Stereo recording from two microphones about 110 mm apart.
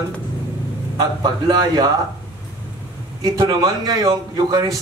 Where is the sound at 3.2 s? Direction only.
35° right (ahead or behind).